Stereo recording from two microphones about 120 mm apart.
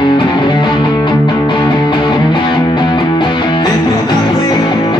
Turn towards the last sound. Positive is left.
turn(degrees=35)  # may be behind; listen again after turning